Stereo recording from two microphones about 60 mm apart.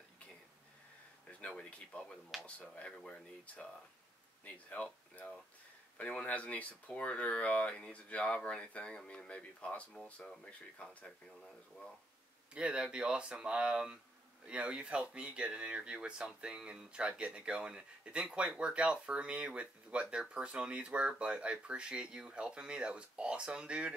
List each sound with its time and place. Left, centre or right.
1.5 s speech: left
4.5 s speech: left
5.9 s speech: left
12.5 s speech: centre